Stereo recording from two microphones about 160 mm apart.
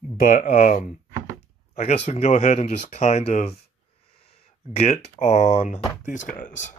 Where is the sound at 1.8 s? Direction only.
45° left (ahead or behind).